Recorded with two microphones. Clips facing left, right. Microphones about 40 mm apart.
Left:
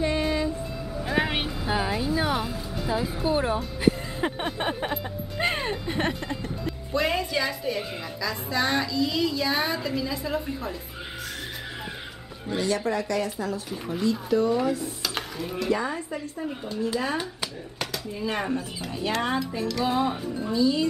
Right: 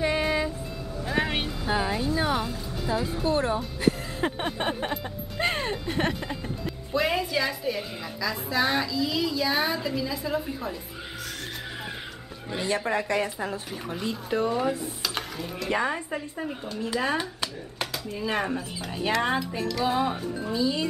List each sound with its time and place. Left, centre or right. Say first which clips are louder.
0.0 s music: even; centre
1.0 s a woman's voice: left 1 dB; centre
12.5 s speech: left 1 dB; right
15.1 s speech: left 2 dB; centre
15.7 s speech: right 2 dB; right
16.9 s a woman's voice: right 1 dB; centre